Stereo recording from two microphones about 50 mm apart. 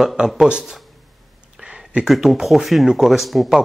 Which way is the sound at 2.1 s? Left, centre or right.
Centre.